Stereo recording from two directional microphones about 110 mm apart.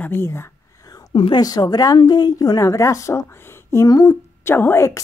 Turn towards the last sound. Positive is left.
turn(degrees=25)  # may be behind; listen again after turning